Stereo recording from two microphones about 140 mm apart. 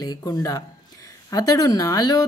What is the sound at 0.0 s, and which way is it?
Speech, 30° left (ahead or behind).